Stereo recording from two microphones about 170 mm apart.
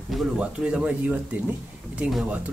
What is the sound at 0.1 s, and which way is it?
Speech, 5° right (ahead or behind).